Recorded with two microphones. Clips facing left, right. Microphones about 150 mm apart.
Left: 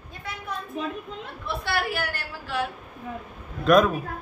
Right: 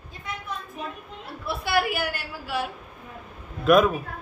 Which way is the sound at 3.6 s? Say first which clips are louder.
Even; 5° right (ahead or behind).